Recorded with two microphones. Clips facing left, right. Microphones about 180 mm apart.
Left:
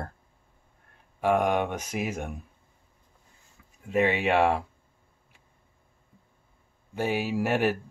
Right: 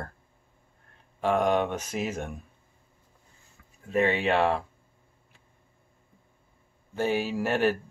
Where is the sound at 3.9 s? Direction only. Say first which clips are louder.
Left 1 dB; 15° left (ahead or behind).